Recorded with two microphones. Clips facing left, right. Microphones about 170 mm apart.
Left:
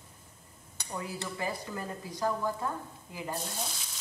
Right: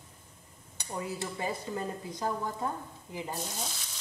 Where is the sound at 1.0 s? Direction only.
25° right (ahead or behind).